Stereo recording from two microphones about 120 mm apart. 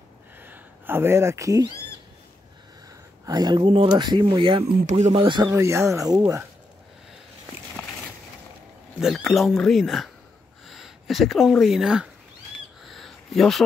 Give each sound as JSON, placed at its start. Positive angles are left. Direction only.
{"t": 0.4, "sound": "a sound", "side_deg": -15}
{"t": 3.3, "sound": "speech", "side_deg": -35}
{"t": 4.8, "sound": "speech", "side_deg": -70}
{"t": 5.1, "sound": "speech", "side_deg": -50}
{"t": 5.5, "sound": "speech", "side_deg": -20}
{"t": 9.0, "sound": "speech", "side_deg": 0}
{"t": 12.8, "sound": "a sound", "side_deg": 0}